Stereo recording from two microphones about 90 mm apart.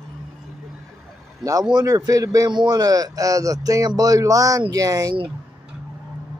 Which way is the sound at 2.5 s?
50° right (ahead or behind).